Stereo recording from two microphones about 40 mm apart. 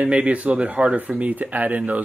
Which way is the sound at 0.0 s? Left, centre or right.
Right.